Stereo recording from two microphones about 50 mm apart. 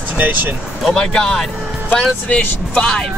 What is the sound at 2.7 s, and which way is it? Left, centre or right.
Speech, centre.